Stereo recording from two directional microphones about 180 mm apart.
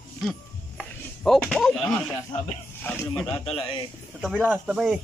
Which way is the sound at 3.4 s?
30° left (ahead or behind).